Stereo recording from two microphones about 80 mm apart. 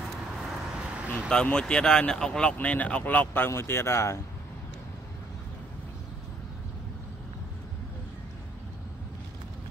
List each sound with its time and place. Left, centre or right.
0.4 s vehicle: centre
1.3 s speech: centre
3.4 s speech: left